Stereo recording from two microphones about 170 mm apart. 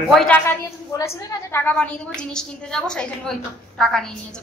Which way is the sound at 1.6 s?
5° left (ahead or behind).